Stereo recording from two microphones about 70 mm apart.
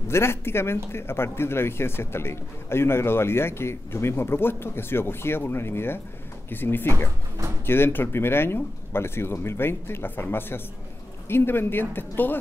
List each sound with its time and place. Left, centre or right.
0.1 s speech: left